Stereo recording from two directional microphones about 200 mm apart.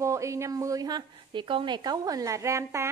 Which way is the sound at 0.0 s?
15° right (ahead or behind).